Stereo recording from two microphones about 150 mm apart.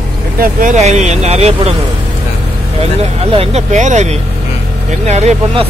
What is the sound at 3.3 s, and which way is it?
Speech, 45° right (ahead or behind).